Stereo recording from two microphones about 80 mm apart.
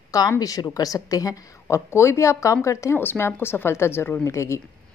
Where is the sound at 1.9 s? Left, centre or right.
Left.